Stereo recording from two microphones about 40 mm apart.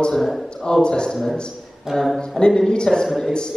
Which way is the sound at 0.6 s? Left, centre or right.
Centre.